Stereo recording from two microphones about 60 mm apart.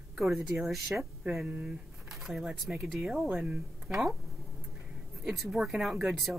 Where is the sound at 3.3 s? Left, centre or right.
Right.